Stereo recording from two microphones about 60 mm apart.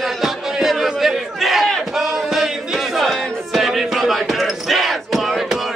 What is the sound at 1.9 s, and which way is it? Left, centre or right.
Music, centre.